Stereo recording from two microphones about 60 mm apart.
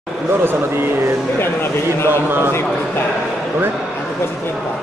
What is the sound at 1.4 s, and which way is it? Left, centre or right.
Speech, left.